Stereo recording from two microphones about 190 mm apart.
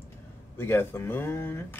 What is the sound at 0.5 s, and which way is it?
Speech, 10° left (ahead or behind).